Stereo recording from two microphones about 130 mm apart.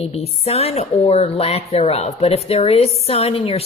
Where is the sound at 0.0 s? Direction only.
55° left (ahead or behind).